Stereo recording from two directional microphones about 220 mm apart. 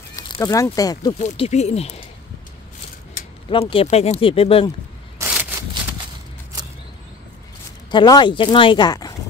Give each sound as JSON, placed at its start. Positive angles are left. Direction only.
{"t": 0.1, "sound": "speech", "side_deg": 15}
{"t": 1.2, "sound": "speech", "side_deg": 30}
{"t": 3.4, "sound": "speech", "side_deg": 25}
{"t": 5.2, "sound": "a sound", "side_deg": -10}
{"t": 7.9, "sound": "speech", "side_deg": 20}